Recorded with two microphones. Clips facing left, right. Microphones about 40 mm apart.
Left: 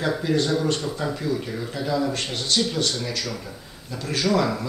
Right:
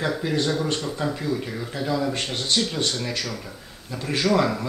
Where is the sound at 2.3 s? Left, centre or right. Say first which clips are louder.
Left 1 dB; right.